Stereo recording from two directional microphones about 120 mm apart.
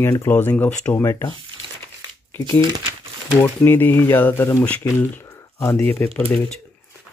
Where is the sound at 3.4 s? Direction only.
20° left (ahead or behind).